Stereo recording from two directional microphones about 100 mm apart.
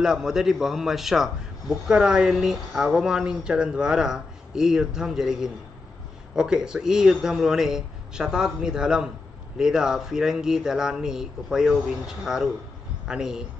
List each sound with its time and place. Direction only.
0.0 s a man's voice: 5° right (ahead or behind)